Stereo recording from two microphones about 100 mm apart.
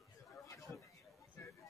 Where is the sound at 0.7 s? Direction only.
25° left (ahead or behind).